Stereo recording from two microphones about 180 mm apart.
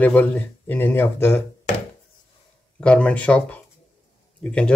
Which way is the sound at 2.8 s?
5° left (ahead or behind).